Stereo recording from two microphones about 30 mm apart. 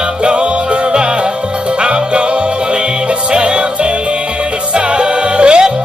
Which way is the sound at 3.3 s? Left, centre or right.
Right.